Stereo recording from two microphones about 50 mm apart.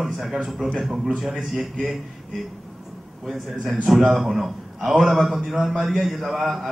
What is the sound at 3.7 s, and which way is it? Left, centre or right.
Speech, centre.